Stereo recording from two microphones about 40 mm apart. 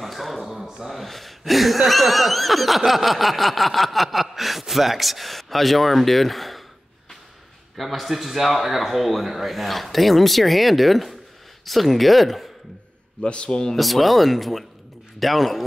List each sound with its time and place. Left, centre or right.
0.0 s speech: centre
7.7 s speech: centre
13.2 s speech: left
13.7 s speech: centre